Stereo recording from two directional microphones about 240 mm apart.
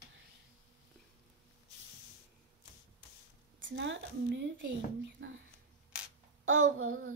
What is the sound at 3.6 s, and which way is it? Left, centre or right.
A woman's voice, right.